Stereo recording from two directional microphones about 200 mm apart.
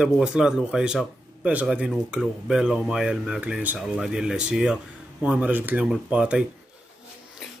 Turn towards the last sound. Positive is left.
turn(degrees=-5)  # may be behind; listen again after turning